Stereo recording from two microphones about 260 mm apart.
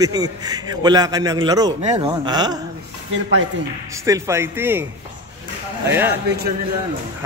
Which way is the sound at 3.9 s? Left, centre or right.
Centre.